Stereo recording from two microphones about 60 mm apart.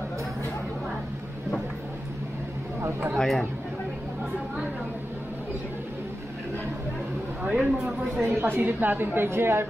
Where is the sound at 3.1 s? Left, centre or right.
Centre.